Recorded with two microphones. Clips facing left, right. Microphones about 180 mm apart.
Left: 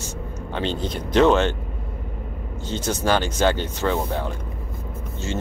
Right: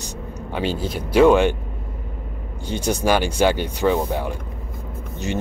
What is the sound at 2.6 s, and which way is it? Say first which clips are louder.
Speech: right 3 dB; 10° right (ahead or behind).